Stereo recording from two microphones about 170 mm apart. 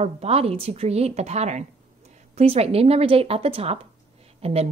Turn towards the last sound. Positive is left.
turn(degrees=-35)  # may be behind; listen again after turning